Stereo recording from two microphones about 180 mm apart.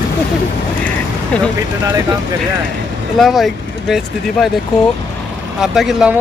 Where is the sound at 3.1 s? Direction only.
Centre (ahead or behind).